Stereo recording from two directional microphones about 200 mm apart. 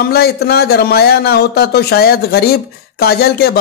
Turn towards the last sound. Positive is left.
turn(degrees=50)  # may be behind; listen again after turning